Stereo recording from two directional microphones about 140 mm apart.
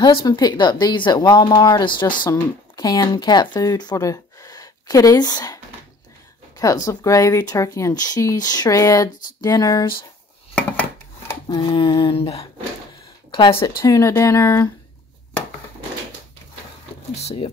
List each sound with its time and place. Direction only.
0.0 s speech: 30° left (ahead or behind)
6.6 s speech: 25° left (ahead or behind)
10.5 s a sound: 10° left (ahead or behind)
11.4 s a sound: 35° left (ahead or behind)
13.3 s speech: 40° left (ahead or behind)
13.7 s speech: 25° left (ahead or behind)
17.1 s speech: 50° left (ahead or behind)